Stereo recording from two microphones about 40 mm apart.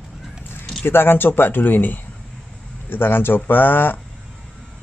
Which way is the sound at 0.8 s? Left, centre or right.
Left.